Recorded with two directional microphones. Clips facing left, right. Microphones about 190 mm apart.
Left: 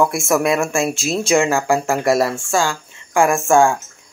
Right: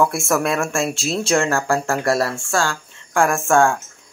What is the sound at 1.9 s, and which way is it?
Speech, 15° left (ahead or behind).